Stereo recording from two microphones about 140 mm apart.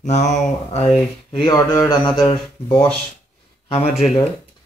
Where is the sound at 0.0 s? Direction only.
55° left (ahead or behind).